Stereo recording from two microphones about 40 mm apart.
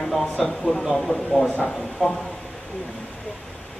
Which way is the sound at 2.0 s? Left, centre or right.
Centre.